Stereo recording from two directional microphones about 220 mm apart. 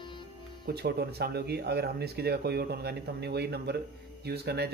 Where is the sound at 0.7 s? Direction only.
45° right (ahead or behind).